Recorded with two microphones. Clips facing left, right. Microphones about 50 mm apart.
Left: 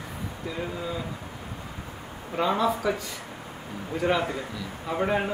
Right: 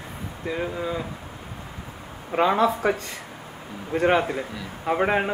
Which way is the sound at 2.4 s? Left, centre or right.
Right.